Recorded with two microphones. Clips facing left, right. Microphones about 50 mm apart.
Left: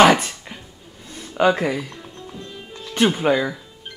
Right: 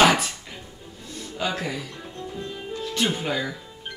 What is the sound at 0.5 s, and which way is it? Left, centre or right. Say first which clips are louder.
Music: left 1 dB; centre.